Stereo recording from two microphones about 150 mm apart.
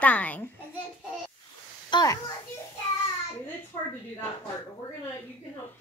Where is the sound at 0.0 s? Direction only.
10° left (ahead or behind).